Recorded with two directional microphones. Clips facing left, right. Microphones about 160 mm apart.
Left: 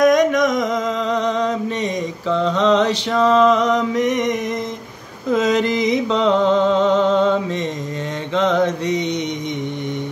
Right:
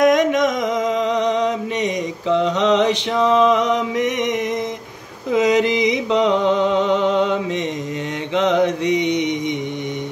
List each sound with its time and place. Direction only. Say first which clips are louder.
0.0 s music: left 1 dB; 25° right (ahead or behind)
1.1 s mantra: right 1 dB; 20° right (ahead or behind)
5.3 s a sound: right 1 dB; 15° right (ahead or behind)
8.4 s mantra: right 1 dB; 20° right (ahead or behind)